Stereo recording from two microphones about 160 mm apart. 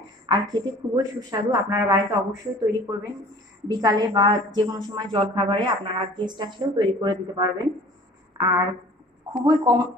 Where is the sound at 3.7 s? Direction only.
25° right (ahead or behind).